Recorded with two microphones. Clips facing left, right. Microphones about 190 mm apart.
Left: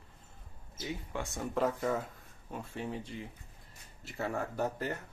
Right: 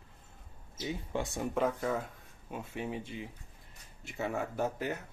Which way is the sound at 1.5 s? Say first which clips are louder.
Left 1 dB; centre (ahead or behind).